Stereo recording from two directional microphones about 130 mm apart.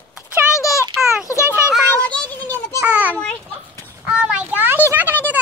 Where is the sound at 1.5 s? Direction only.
5° right (ahead or behind).